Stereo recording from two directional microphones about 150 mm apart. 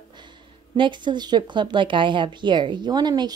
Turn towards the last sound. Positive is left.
turn(degrees=-30)  # may be behind; listen again after turning